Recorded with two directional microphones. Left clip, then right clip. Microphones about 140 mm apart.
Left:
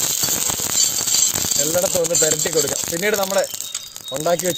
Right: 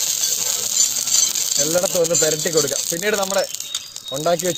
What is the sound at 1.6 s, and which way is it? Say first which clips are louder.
Speech: right 1 dB; centre (ahead or behind).